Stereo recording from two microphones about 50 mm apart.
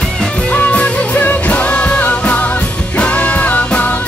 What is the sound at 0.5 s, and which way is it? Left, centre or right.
Music, left.